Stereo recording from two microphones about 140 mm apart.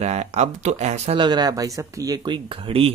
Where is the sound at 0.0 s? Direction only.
50° right (ahead or behind).